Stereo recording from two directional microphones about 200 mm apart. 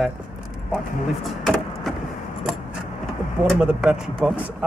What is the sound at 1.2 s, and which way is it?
Vehicle, centre (ahead or behind).